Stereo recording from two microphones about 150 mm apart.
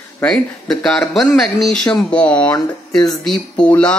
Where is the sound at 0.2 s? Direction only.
5° left (ahead or behind).